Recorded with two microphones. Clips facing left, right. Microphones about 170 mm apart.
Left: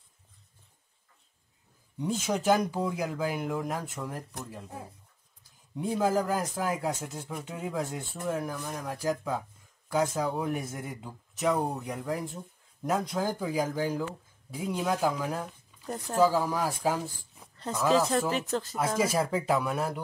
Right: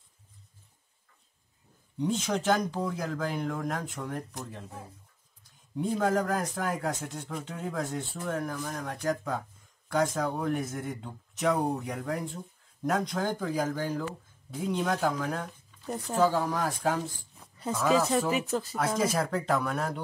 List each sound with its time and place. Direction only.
2.0 s speech: 5° left (ahead or behind)
5.8 s speech: 5° left (ahead or behind)
17.6 s speech: 5° right (ahead or behind)
18.8 s speech: 5° left (ahead or behind)